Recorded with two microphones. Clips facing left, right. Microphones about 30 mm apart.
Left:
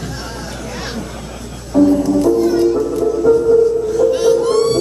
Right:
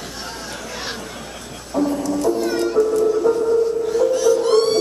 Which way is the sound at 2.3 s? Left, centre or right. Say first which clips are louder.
Left 5 dB; centre.